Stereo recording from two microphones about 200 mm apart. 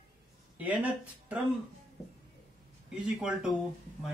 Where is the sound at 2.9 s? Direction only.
5° right (ahead or behind).